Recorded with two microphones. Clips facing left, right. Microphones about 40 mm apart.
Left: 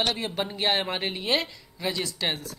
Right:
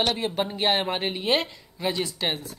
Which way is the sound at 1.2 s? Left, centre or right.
Right.